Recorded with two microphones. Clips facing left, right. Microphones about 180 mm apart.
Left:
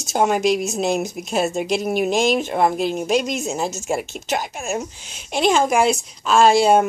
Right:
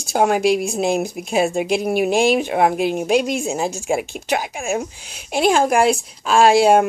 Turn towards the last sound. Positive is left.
turn(degrees=-5)  # may be behind; listen again after turning